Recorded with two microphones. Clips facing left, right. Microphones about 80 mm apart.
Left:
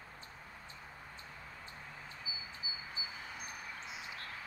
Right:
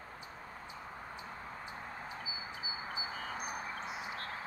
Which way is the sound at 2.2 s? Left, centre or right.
Right.